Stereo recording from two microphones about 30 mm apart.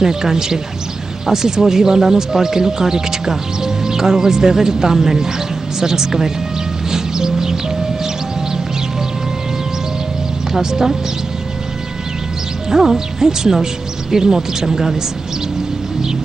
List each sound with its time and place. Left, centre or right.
0.0 s a woman's voice: centre
6.9 s music: centre
10.5 s a woman's voice: centre
12.6 s a woman's voice: centre